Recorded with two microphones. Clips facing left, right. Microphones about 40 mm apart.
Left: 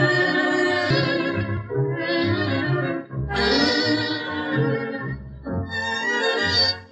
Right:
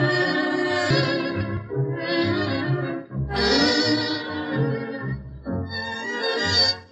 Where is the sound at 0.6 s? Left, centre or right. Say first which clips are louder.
Left 1 dB; centre.